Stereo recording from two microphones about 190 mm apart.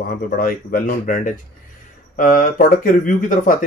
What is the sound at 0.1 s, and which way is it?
Speech, 50° left (ahead or behind).